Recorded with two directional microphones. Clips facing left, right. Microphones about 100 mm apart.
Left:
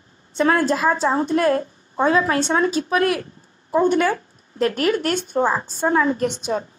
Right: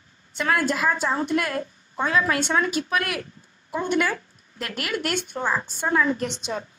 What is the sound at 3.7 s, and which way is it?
A woman's voice, 40° left (ahead or behind).